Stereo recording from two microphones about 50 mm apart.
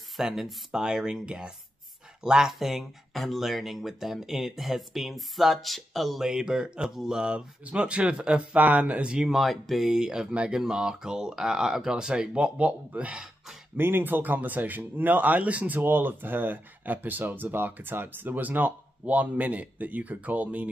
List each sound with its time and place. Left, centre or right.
0.2 s speech: centre
8.5 s speech: right
9.3 s speech: centre
10.3 s speech: right
10.6 s speech: centre
13.7 s speech: right
15.8 s speech: right